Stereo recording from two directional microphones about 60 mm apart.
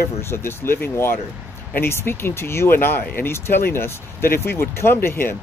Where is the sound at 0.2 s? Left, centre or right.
Left.